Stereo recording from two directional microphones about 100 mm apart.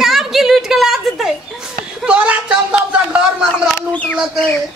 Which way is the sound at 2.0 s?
15° right (ahead or behind).